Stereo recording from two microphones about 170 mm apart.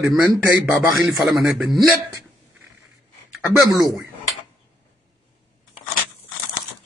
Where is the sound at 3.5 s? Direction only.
20° left (ahead or behind).